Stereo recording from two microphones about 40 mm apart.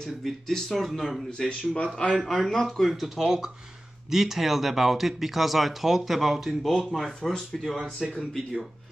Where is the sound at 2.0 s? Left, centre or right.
Left.